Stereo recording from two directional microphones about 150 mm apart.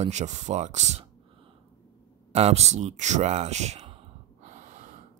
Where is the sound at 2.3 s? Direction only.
45° right (ahead or behind).